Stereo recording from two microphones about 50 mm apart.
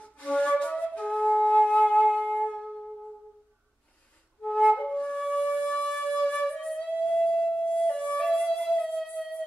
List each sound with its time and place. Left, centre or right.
0.0 s flute: left
2.0 s wind instrument: centre
2.3 s music: left
4.7 s flute: left
5.3 s music: left
5.9 s flute: centre
6.4 s music: centre
8.3 s music: centre